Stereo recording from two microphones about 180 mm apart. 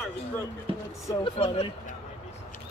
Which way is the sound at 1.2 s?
30° left (ahead or behind).